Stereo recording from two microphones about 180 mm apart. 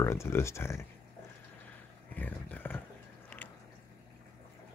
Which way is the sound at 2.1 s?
10° left (ahead or behind).